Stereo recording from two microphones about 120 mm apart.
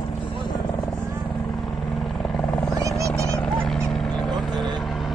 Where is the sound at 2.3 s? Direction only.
5° left (ahead or behind).